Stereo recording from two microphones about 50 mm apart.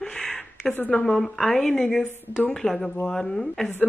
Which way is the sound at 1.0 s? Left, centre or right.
Centre.